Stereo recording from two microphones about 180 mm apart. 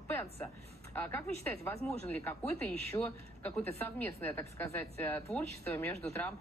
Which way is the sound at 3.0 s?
20° left (ahead or behind).